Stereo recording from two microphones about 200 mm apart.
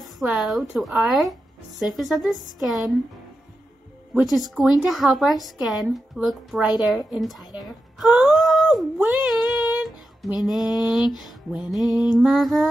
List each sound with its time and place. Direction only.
0.0 s a woman's voice: centre (ahead or behind)
4.4 s a woman's voice: centre (ahead or behind)
9.8 s a sound: centre (ahead or behind)
10.7 s a woman's voice: centre (ahead or behind)